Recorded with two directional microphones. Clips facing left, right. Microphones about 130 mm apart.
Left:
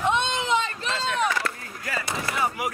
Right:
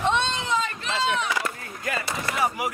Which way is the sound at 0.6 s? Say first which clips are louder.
Right 2 dB; 35° left (ahead or behind).